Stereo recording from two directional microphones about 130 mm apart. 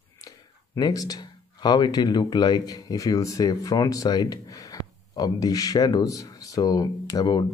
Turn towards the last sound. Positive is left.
turn(degrees=30)  # may be behind; listen again after turning